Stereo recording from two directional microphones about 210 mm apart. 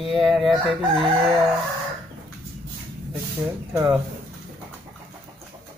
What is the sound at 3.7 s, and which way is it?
Speech, 5° right (ahead or behind).